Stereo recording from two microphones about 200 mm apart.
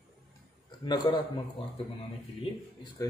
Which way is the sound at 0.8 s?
20° left (ahead or behind).